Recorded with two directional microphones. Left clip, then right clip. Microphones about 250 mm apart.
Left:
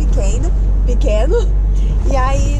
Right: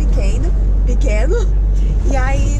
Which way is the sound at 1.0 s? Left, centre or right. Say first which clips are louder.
Left 4 dB; centre.